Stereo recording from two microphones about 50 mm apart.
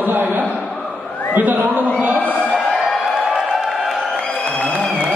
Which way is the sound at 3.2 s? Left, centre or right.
Centre.